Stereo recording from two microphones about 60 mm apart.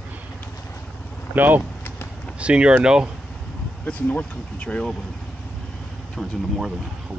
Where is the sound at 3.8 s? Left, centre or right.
Left.